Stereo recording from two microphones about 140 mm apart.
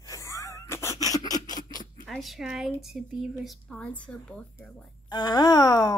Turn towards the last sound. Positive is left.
turn(degrees=30)  # may be behind; listen again after turning